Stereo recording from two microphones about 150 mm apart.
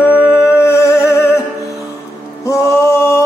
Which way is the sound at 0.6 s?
15° left (ahead or behind).